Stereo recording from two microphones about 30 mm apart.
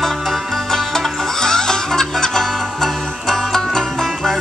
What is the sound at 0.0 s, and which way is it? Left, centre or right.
Music, centre.